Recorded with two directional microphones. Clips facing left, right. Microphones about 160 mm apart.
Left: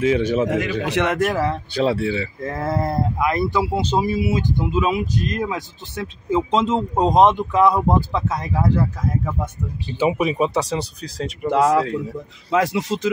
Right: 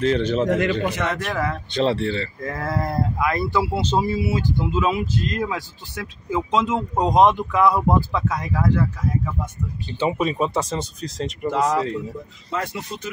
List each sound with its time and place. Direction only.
0.0 s speech: 10° left (ahead or behind)
0.8 s speech: 70° left (ahead or behind)
1.1 s speech: 45° left (ahead or behind)
1.7 s speech: 5° left (ahead or behind)
2.4 s speech: 25° left (ahead or behind)
9.8 s speech: 15° left (ahead or behind)
11.5 s speech: 65° left (ahead or behind)
12.4 s speech: 85° left